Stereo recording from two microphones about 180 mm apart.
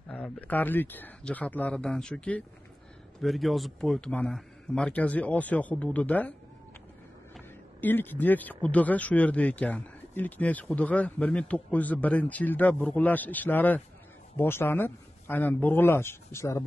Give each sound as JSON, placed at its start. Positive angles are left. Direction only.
{"t": 0.1, "sound": "speech", "side_deg": 5}
{"t": 7.3, "sound": "speech", "side_deg": 10}